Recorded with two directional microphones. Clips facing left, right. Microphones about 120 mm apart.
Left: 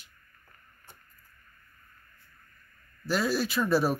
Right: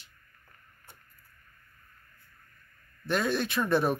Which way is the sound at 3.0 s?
5° left (ahead or behind).